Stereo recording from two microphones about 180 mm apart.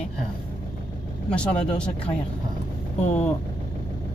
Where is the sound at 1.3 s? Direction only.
5° left (ahead or behind).